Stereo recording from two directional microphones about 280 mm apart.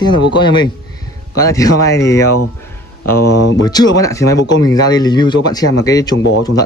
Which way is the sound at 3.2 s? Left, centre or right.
Left.